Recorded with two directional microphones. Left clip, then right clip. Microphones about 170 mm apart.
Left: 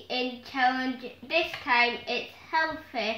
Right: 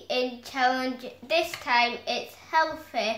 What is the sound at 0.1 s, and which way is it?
A woman's voice, 15° right (ahead or behind).